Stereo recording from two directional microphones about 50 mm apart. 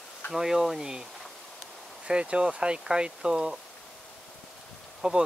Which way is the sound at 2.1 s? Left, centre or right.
Right.